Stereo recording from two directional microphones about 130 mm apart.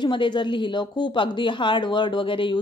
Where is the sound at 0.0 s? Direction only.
35° left (ahead or behind).